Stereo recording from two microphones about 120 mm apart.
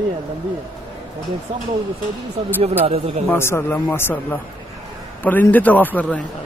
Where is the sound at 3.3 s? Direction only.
20° left (ahead or behind).